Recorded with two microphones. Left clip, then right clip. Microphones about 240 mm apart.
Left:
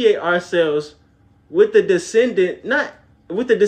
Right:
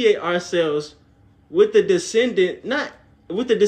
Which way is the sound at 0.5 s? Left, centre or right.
Centre.